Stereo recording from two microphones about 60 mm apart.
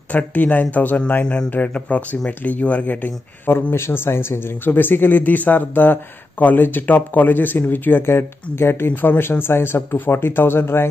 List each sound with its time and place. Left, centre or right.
0.1 s speech: left
1.2 s a man's voice: centre
3.4 s speech: left